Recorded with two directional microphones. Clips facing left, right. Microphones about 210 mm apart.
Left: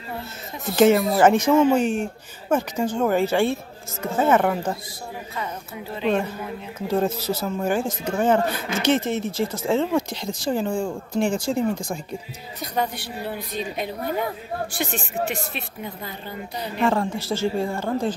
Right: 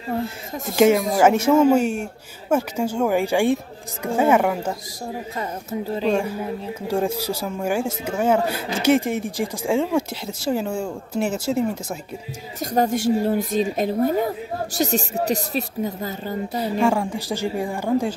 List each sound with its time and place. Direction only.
1.1 s speech: 10° right (ahead or behind)
5.4 s a woman's voice: 35° right (ahead or behind)
6.9 s speech: 10° right (ahead or behind)
12.5 s speech: 45° right (ahead or behind)
16.8 s speech: 15° right (ahead or behind)